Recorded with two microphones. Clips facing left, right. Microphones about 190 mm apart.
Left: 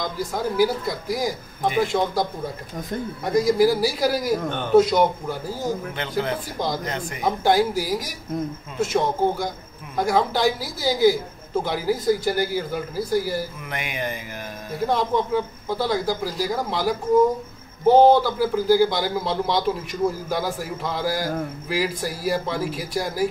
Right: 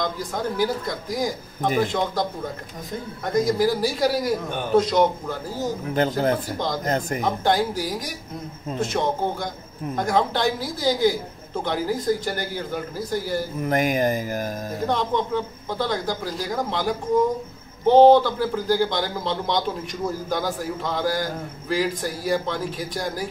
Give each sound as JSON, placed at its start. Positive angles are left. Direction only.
{"t": 0.6, "sound": "a man's voice", "side_deg": 5}
{"t": 3.3, "sound": "a man's voice", "side_deg": 10}
{"t": 5.9, "sound": "a man's voice", "side_deg": -45}
{"t": 7.4, "sound": "a man's voice", "side_deg": 10}
{"t": 13.6, "sound": "speech", "side_deg": -40}
{"t": 14.9, "sound": "a man's voice", "side_deg": 5}